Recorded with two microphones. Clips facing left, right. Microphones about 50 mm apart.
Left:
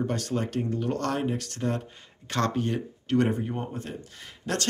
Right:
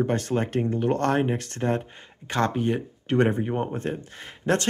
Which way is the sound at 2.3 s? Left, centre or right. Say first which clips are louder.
Right 3 dB; centre.